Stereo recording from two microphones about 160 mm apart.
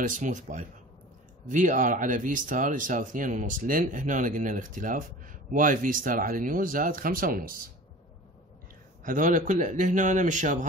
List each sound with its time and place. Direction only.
0.0 s a man's voice: 55° right (ahead or behind)
9.0 s a man's voice: 55° right (ahead or behind)